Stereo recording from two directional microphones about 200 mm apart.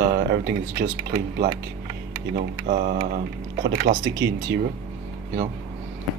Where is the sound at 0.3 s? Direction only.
50° right (ahead or behind).